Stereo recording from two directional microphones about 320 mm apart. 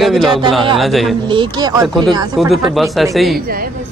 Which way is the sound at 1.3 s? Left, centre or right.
Centre.